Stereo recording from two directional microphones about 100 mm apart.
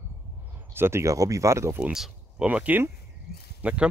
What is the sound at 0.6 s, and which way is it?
Speech, 20° right (ahead or behind).